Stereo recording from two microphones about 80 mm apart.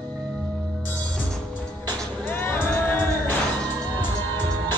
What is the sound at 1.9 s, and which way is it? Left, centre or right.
Music, left.